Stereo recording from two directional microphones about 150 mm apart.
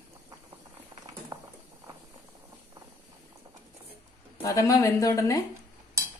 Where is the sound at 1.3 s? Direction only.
25° right (ahead or behind).